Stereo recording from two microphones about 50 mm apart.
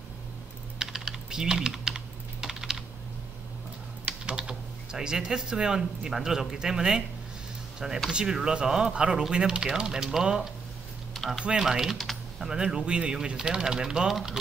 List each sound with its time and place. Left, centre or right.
0.7 s typing: centre
4.0 s typing: right
4.9 s speech: centre
8.1 s speech: centre
11.6 s typing: centre
12.4 s speech: centre